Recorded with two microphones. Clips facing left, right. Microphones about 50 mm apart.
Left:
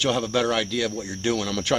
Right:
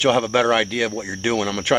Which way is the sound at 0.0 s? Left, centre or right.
Right.